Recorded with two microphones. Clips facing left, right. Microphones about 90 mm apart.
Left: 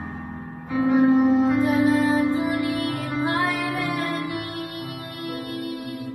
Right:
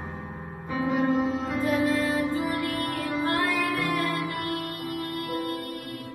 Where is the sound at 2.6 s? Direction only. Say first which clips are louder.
Left 3 dB; 5° left (ahead or behind).